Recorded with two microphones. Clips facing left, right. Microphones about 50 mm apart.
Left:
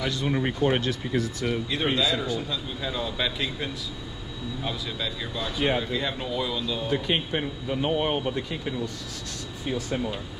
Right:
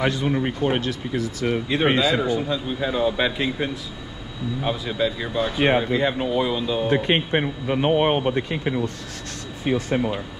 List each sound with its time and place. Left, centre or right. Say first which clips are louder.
0.7 s speech: right 2 dB; right
1.4 s speech: right 6 dB; right
6.9 s a man's voice: right 6 dB; right